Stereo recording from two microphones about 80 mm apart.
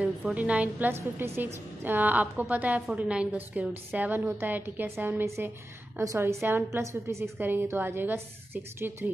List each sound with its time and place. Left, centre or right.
0.0 s a woman's voice: centre; by 7.2 s right
7.3 s a woman's voice: right